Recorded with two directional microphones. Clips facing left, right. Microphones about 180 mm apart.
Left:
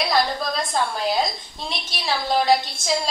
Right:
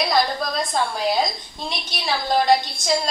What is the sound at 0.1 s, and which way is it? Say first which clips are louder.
A woman's voice: right 1 dB; centre (ahead or behind).